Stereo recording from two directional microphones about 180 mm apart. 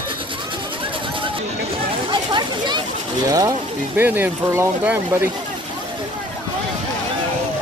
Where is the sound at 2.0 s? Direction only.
25° right (ahead or behind).